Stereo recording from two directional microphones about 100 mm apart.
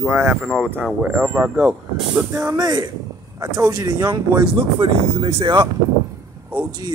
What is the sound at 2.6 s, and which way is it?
Speech, 40° right (ahead or behind).